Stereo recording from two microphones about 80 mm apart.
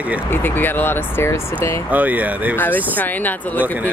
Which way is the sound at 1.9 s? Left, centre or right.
Right.